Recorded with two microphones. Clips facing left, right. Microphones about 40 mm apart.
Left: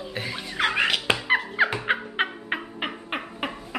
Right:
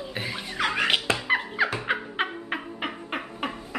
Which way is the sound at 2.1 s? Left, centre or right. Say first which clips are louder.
Left 2 dB; centre.